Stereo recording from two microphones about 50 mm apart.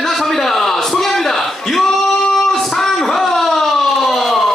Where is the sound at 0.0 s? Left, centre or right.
Centre.